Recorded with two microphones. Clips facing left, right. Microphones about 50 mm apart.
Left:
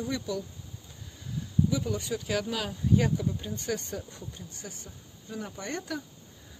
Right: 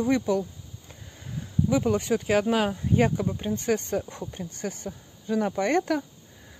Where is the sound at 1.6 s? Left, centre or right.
Right.